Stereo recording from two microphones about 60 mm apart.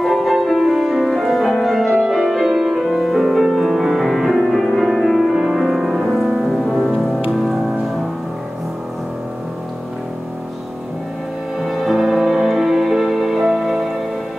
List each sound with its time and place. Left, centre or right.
0.0 s music: centre
11.6 s music: centre